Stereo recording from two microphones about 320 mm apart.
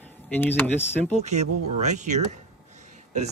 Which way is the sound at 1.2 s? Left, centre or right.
Right.